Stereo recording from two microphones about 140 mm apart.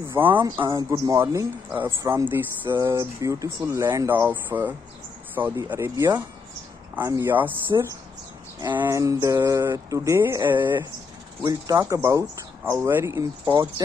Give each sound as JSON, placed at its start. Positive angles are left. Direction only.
{"t": 0.1, "sound": "speech", "side_deg": -15}
{"t": 0.7, "sound": "speech", "side_deg": -25}
{"t": 8.7, "sound": "speech", "side_deg": -20}